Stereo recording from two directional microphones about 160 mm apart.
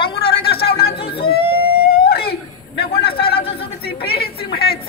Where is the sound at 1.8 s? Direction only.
75° left (ahead or behind).